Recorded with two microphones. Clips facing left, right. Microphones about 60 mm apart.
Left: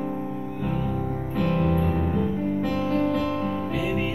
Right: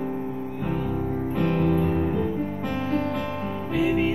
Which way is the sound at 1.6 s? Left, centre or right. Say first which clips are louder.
Right 2 dB; centre.